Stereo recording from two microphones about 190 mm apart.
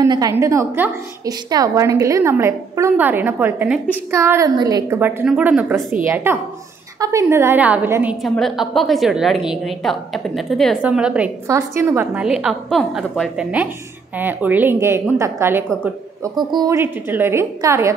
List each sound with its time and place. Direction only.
0.0 s a woman's voice: 20° right (ahead or behind)